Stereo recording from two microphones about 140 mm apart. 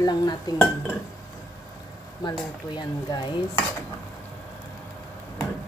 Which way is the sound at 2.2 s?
30° left (ahead or behind).